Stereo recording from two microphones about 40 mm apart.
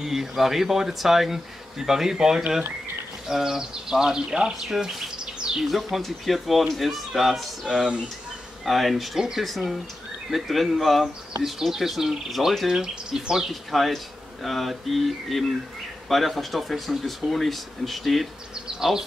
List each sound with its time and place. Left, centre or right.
0.0 s speech: centre
5.6 s speech: centre
8.6 s speech: centre
12.8 s speech: centre
13.5 s speech: centre
18.7 s bee: centre